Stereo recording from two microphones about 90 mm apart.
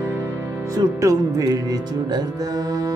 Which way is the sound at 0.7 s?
40° right (ahead or behind).